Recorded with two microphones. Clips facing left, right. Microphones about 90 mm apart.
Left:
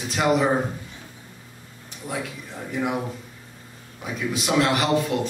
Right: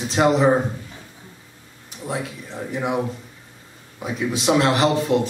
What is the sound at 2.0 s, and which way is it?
Speech, 25° right (ahead or behind).